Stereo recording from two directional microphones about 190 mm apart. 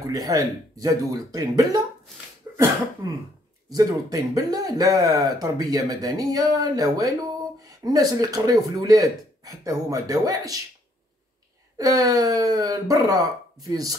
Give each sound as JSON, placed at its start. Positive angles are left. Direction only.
{"t": 0.0, "sound": "speech", "side_deg": -20}
{"t": 2.5, "sound": "cough", "side_deg": -15}
{"t": 3.6, "sound": "speech", "side_deg": -20}
{"t": 11.8, "sound": "speech", "side_deg": -20}